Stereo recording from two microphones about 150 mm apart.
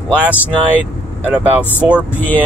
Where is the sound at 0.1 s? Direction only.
10° right (ahead or behind).